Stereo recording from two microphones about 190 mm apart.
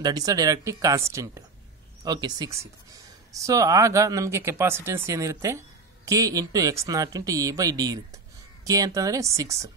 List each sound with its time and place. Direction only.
0.0 s speech: 20° right (ahead or behind)